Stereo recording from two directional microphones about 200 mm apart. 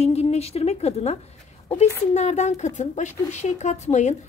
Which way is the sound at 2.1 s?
35° left (ahead or behind).